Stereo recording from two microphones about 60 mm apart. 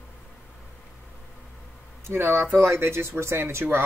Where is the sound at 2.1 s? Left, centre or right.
Right.